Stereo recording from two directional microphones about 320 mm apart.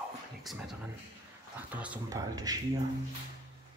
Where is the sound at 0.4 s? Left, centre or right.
Centre.